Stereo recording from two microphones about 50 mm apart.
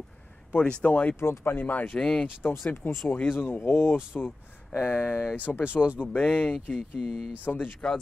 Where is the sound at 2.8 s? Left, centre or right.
Left.